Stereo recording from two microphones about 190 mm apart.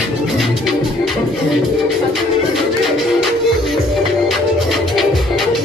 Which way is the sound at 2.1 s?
Centre (ahead or behind).